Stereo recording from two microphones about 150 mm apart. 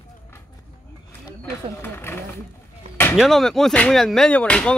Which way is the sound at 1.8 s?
15° left (ahead or behind).